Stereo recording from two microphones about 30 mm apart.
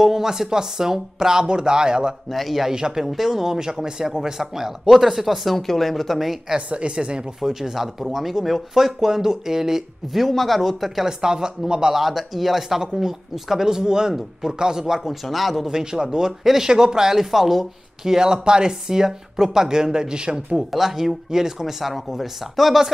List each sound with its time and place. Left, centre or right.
0.0 s speech: centre
2.3 s speech: centre
2.7 s speech: centre
6.7 s a woman's voice: right
7.3 s speech: centre
10.3 s speech: centre
11.1 s speech: right
11.9 s speech: centre
15.2 s speech: centre
15.6 s speech: right; by 17.6 s centre
18.0 s speech: right
20.7 s speech: centre